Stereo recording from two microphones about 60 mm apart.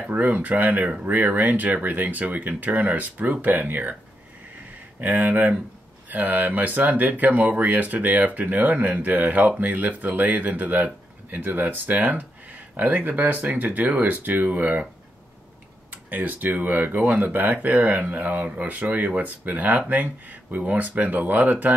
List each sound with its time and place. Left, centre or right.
0.0 s speech: right
5.0 s speech: right
16.1 s speech: right